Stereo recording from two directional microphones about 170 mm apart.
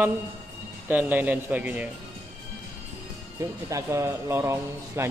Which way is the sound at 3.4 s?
15° right (ahead or behind).